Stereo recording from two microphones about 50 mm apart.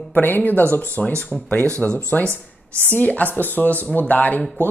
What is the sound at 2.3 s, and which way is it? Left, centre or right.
Speech, right.